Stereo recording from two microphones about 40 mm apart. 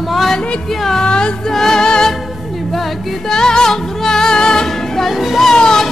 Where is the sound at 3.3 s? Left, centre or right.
Centre.